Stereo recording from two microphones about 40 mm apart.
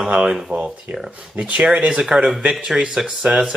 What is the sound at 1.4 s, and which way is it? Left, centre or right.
Speech, right.